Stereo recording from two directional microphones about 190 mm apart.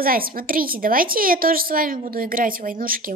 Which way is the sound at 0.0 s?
50° right (ahead or behind).